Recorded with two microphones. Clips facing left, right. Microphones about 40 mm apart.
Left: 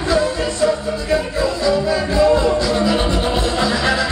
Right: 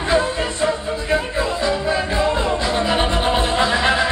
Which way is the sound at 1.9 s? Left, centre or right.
Right.